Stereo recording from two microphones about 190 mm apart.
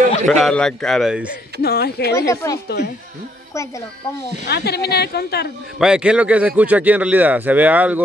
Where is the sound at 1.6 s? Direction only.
55° left (ahead or behind).